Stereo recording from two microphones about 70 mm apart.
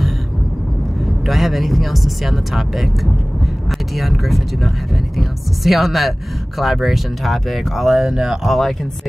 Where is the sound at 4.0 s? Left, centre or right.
Centre.